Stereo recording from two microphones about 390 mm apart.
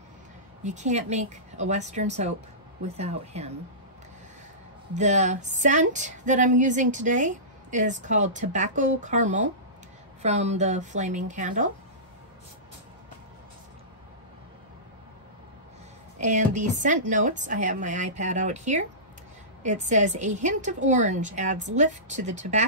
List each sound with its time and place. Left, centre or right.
0.7 s speech: centre
4.9 s speech: centre
16.2 s speech: centre